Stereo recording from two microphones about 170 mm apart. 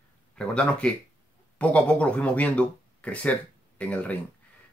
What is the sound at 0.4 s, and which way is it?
Speech, 5° left (ahead or behind).